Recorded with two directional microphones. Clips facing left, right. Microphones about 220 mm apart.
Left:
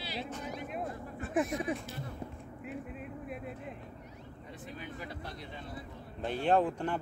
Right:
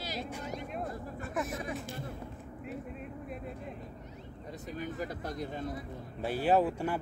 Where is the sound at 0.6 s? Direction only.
5° left (ahead or behind).